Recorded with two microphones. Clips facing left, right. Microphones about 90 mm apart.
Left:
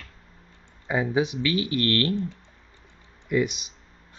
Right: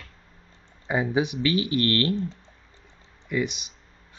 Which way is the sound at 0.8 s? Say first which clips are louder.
Even; 10° right (ahead or behind).